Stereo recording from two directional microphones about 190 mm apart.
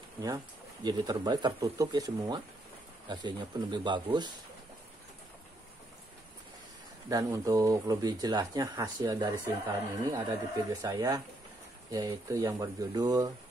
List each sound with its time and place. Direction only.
0.8 s speech: 20° right (ahead or behind)
7.1 s speech: 20° right (ahead or behind)